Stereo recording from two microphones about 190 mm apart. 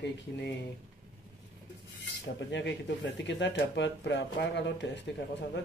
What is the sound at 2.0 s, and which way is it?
Speech, 70° left (ahead or behind).